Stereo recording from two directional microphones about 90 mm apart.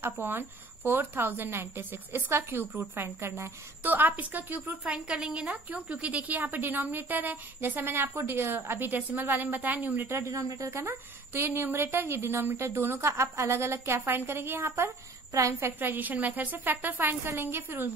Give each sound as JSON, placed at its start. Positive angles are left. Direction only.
{"t": 0.0, "sound": "a woman's voice", "side_deg": -25}
{"t": 15.8, "sound": "a woman's voice", "side_deg": -20}